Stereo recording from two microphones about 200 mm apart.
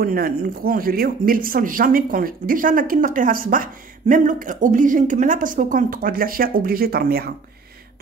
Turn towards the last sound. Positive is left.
turn(degrees=-50)  # may be behind; listen again after turning